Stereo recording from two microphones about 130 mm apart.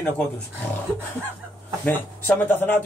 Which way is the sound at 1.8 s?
15° left (ahead or behind).